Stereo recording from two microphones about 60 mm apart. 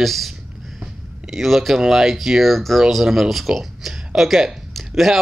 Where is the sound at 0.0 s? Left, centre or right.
Centre.